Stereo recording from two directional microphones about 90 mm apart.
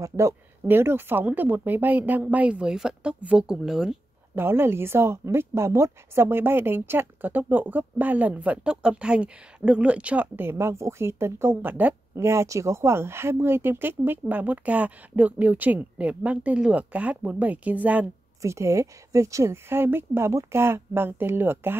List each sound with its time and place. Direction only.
0.0 s speech: 35° right (ahead or behind)
0.7 s speech: 25° right (ahead or behind); by 3.9 s 5° right (ahead or behind)
4.4 s a woman's voice: 25° right (ahead or behind)
12.2 s a woman's voice: 30° right (ahead or behind)
18.4 s a woman's voice: 35° right (ahead or behind)